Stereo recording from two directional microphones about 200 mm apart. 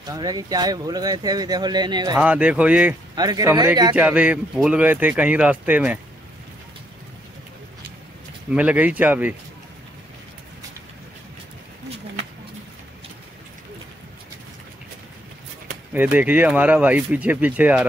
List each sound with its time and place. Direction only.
0.0 s speech: 20° right (ahead or behind)
2.1 s speech: 5° right (ahead or behind)
3.2 s speech: 20° right (ahead or behind)
3.9 s speech: 5° right (ahead or behind)
8.5 s speech: 5° right (ahead or behind)
15.9 s speech: 10° right (ahead or behind)